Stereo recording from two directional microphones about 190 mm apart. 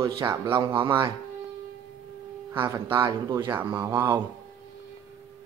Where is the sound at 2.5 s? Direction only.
20° right (ahead or behind).